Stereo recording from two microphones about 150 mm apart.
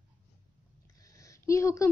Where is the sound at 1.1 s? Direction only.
20° left (ahead or behind).